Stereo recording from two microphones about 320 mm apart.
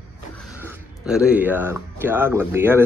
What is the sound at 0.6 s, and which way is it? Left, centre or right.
Speech, centre.